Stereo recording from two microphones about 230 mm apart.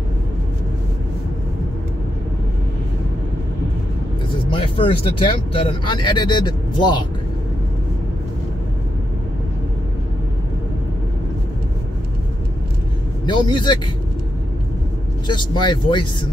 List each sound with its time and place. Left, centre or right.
4.5 s speech: left
13.2 s speech: centre
15.2 s speech: centre